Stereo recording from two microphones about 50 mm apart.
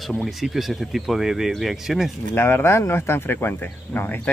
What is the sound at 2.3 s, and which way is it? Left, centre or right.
Speech, left.